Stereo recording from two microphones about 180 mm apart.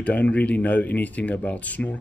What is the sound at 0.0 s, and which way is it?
Speech, 10° left (ahead or behind).